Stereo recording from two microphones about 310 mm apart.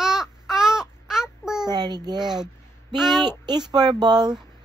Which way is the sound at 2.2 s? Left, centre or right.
Centre.